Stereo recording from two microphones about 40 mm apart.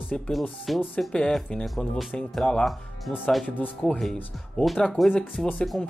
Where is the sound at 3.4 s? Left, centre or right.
Left.